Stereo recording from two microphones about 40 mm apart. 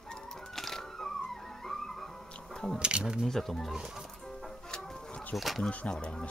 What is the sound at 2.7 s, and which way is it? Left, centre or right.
Speech, right.